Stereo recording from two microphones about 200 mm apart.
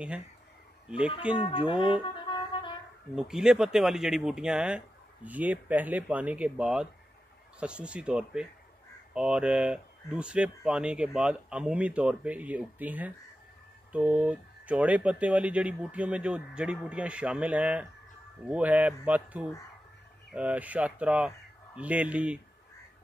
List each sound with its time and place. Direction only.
0.8 s speech: 5° right (ahead or behind)
1.6 s music: 25° left (ahead or behind)
3.2 s speech: 5° right (ahead or behind)